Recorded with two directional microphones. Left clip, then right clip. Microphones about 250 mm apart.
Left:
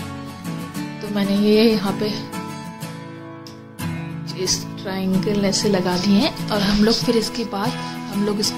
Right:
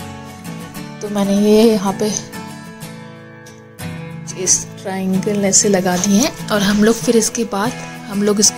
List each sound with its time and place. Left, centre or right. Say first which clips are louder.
1.1 s a woman's voice: right 5 dB; centre
4.4 s a woman's voice: right 5 dB; centre